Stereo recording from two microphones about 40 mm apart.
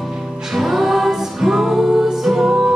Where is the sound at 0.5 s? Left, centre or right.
Centre.